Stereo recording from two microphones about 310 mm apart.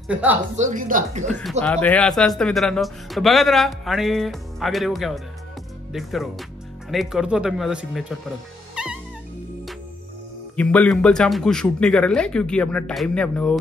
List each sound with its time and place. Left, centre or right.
0.1 s speech: centre
0.6 s speech: right
1.6 s speech: centre
8.8 s cat: centre
10.5 s speech: centre